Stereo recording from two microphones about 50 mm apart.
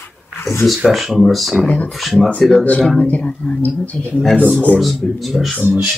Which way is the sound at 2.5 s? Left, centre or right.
Left.